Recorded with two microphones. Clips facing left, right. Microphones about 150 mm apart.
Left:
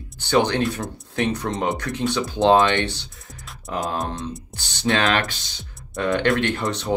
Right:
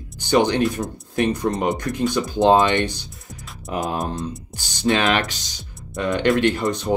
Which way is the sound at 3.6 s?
20° right (ahead or behind).